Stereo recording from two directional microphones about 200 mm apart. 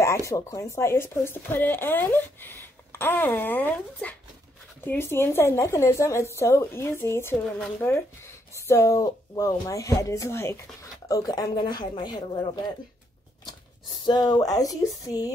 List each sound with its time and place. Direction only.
0.0 s speech: 15° left (ahead or behind)
14.0 s speech: 20° left (ahead or behind)